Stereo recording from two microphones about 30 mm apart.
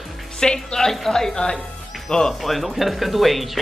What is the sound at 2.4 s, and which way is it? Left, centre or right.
Speech, centre.